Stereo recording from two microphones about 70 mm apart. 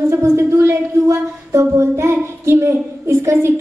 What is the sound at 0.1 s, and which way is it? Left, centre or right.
Speech, right.